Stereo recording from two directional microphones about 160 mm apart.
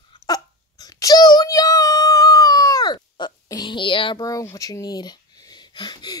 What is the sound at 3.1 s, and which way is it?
Speech, 25° left (ahead or behind).